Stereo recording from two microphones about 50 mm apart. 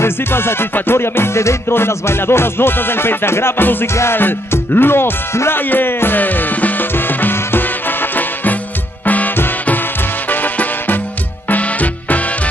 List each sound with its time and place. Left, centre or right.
0.0 s music: left
4.2 s music: left
5.6 s music: left
10.3 s music: left